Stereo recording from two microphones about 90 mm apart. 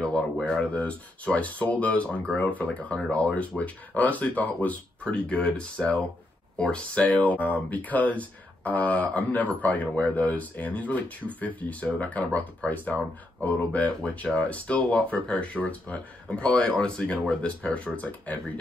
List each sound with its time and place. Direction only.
0.0 s speech: 10° left (ahead or behind)